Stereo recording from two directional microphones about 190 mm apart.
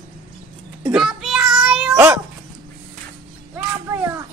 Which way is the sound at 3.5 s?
10° right (ahead or behind).